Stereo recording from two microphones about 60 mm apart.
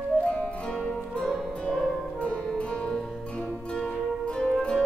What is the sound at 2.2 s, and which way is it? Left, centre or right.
Music, centre.